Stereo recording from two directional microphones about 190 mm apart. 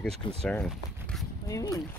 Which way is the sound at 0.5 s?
5° left (ahead or behind).